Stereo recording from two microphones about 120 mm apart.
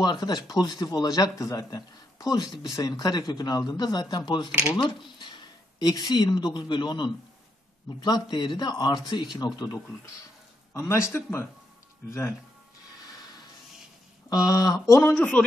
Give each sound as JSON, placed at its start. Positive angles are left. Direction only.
{"t": 0.0, "sound": "speech", "side_deg": 35}
{"t": 10.7, "sound": "a man's voice", "side_deg": 20}
{"t": 14.3, "sound": "speech", "side_deg": 30}
{"t": 15.1, "sound": "a man's voice", "side_deg": 10}